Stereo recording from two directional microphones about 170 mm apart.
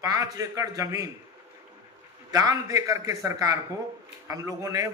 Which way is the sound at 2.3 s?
20° right (ahead or behind).